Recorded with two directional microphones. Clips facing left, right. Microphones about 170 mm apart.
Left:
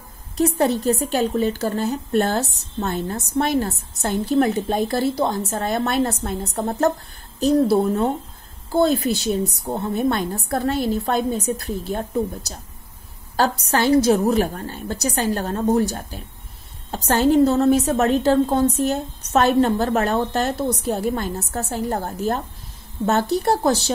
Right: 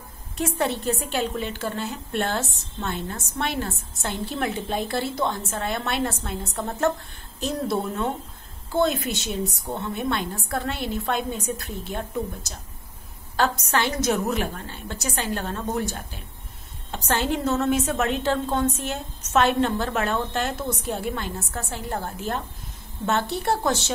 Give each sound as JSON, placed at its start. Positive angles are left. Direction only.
{"t": 0.4, "sound": "a woman's voice", "side_deg": 35}